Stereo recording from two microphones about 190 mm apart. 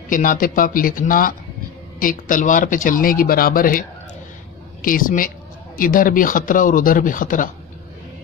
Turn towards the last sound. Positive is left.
turn(degrees=45)  # may be behind; listen again after turning